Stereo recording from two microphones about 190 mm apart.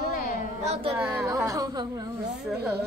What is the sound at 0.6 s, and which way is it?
Music, 30° right (ahead or behind).